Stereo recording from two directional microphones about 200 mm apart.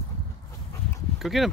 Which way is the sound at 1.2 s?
Centre (ahead or behind).